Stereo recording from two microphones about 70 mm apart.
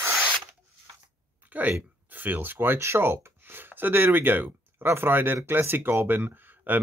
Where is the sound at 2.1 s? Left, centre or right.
Right.